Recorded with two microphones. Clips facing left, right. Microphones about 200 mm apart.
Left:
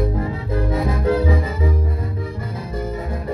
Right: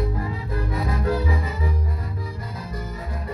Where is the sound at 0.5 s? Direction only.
25° left (ahead or behind).